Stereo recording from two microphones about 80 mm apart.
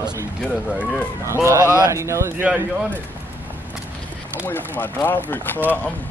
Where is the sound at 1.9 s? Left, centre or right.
Right.